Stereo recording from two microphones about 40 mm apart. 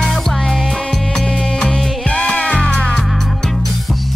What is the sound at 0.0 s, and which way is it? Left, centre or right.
Music, centre.